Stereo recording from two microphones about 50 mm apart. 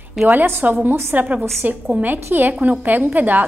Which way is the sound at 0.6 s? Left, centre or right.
Right.